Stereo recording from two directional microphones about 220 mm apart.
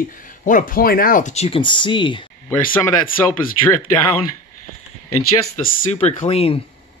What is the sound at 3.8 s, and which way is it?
Speech, 90° left.